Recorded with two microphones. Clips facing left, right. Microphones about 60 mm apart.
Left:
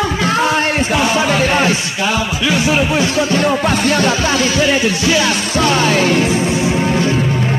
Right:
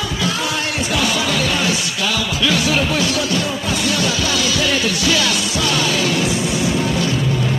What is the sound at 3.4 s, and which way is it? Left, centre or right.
Music, left.